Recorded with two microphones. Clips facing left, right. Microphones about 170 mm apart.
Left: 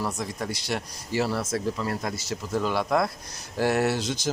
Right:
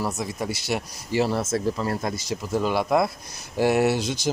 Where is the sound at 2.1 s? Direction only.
15° right (ahead or behind).